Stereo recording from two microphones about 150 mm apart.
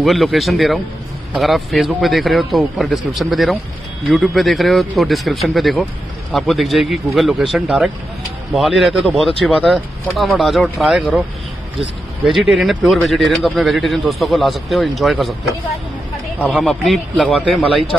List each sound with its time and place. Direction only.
0.0 s speech: centre (ahead or behind)
16.3 s speech: 10° right (ahead or behind)
16.6 s speech: centre (ahead or behind)